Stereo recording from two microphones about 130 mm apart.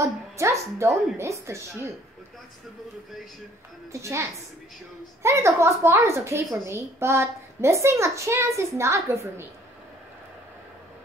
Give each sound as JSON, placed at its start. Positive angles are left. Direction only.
{"t": 0.0, "sound": "a woman's voice", "side_deg": -25}
{"t": 3.9, "sound": "a woman's voice", "side_deg": -25}